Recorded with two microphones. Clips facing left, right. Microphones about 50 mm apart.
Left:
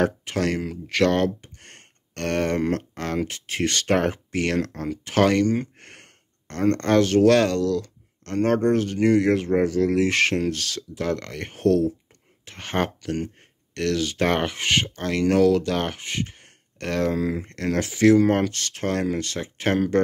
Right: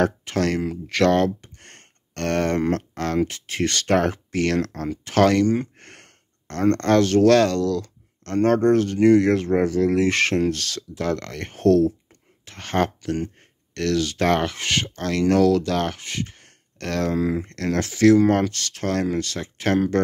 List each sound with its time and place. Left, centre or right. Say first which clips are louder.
0.0 s speech: right 1 dB; centre
17.2 s speech: right 3 dB; centre
17.5 s speech: right 1 dB; centre